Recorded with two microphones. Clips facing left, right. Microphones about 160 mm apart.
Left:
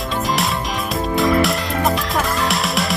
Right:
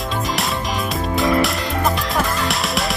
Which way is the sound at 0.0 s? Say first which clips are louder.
Left 2 dB; centre (ahead or behind).